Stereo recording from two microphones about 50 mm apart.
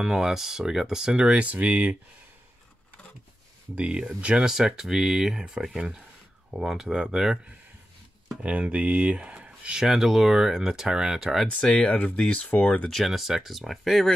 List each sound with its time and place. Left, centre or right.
0.0 s speech: centre
1.4 s speech: right
3.7 s speech: right
4.5 s speech: centre
8.4 s speech: right
9.8 s speech: centre
11.7 s speech: left
13.0 s speech: centre